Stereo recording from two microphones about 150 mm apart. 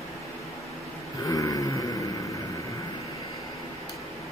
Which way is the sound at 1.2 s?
25° left (ahead or behind).